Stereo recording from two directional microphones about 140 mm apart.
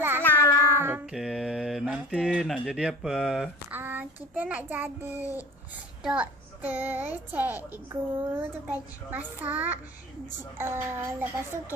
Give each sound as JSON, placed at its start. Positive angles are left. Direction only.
{"t": 0.2, "sound": "a sound", "side_deg": 15}
{"t": 0.7, "sound": "music", "side_deg": -15}
{"t": 1.1, "sound": "speech", "side_deg": -5}
{"t": 3.7, "sound": "child singing", "side_deg": -15}
{"t": 6.0, "sound": "a child's voice", "side_deg": -10}